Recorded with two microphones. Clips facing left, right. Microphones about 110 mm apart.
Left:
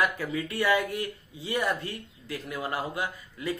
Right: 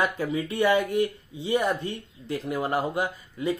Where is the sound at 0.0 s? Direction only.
20° right (ahead or behind).